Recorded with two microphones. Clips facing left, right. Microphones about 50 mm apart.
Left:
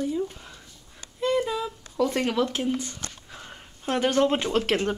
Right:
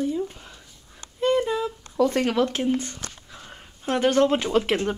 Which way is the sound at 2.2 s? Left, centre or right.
Right.